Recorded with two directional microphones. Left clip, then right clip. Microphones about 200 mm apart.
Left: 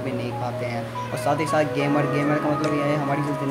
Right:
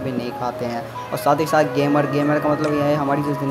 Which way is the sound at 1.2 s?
15° right (ahead or behind).